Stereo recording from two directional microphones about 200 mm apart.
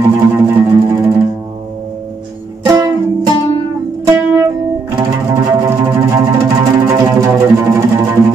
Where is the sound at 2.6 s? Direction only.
15° right (ahead or behind).